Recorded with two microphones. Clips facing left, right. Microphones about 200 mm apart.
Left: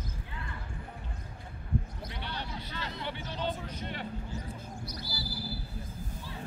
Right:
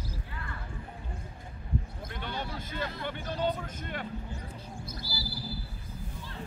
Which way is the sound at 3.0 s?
50° right (ahead or behind).